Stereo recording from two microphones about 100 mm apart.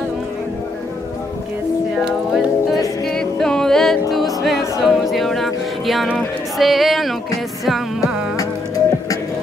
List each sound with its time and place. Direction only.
3.1 s music: 5° left (ahead or behind)
6.1 s a sound: centre (ahead or behind)
7.6 s music: centre (ahead or behind)
8.4 s music: 35° left (ahead or behind)